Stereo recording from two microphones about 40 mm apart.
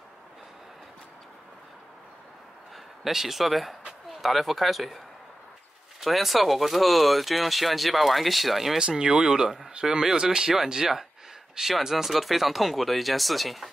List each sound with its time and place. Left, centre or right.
3.0 s speech: centre
8.7 s speech: centre